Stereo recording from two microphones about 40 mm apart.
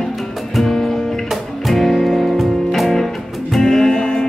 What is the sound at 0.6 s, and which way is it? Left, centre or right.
Music, centre.